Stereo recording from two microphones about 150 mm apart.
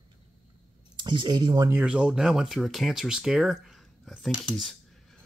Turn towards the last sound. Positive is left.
turn(degrees=5)  # may be behind; listen again after turning